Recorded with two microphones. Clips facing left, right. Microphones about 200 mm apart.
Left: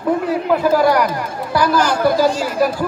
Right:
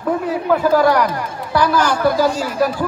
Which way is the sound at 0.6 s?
10° left (ahead or behind).